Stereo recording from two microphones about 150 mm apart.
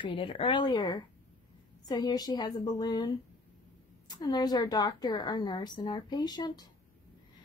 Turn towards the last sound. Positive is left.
turn(degrees=25)  # may be behind; listen again after turning